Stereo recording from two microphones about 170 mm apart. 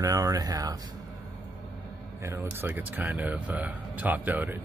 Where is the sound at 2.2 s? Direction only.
15° right (ahead or behind).